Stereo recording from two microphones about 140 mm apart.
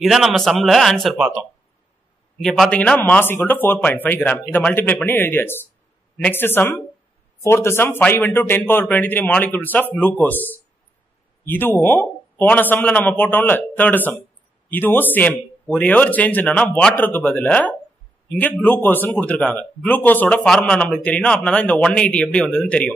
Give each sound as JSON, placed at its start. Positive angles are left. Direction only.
{"t": 0.0, "sound": "speech", "side_deg": 0}
{"t": 2.4, "sound": "speech", "side_deg": 0}